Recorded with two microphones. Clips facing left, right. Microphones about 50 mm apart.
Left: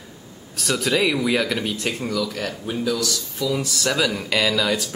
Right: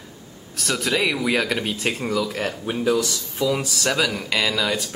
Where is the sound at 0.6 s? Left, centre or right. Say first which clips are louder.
Left 2 dB; centre; by 3.6 s right.